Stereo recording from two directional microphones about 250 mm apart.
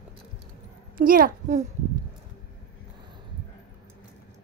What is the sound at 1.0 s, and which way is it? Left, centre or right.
Speech, right.